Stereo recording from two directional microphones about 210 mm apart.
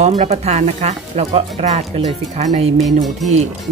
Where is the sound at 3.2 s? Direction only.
Centre (ahead or behind).